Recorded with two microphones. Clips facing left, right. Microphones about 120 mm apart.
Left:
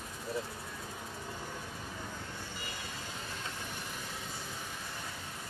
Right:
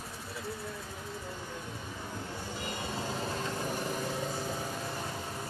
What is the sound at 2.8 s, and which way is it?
Vehicle, 35° right (ahead or behind).